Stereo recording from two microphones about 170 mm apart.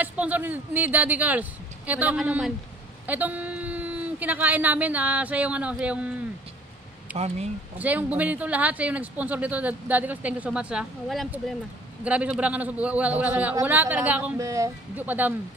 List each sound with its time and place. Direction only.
0.0 s speech: 10° right (ahead or behind)
7.2 s speech: 40° right (ahead or behind)
7.8 s speech: 10° right (ahead or behind)